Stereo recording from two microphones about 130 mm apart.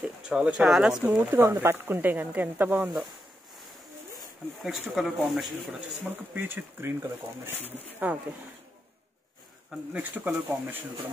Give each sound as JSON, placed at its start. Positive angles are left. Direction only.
{"t": 0.0, "sound": "speech", "side_deg": -5}
{"t": 4.6, "sound": "speech", "side_deg": 0}
{"t": 6.0, "sound": "speech", "side_deg": -15}
{"t": 9.9, "sound": "speech", "side_deg": -10}